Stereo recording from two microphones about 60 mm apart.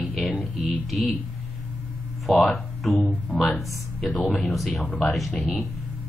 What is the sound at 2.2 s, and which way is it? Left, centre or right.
A woman's voice, centre.